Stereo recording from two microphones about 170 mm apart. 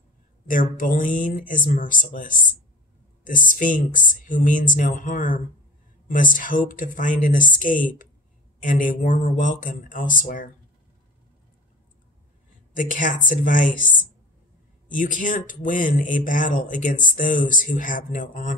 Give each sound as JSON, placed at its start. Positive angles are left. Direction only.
{"t": 0.5, "sound": "speech", "side_deg": 50}
{"t": 12.7, "sound": "speech", "side_deg": 50}
{"t": 14.9, "sound": "speech", "side_deg": 50}